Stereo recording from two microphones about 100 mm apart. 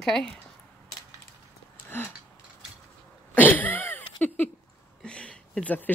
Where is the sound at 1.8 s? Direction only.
20° left (ahead or behind).